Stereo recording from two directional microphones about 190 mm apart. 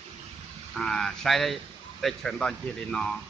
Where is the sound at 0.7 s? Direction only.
Centre (ahead or behind).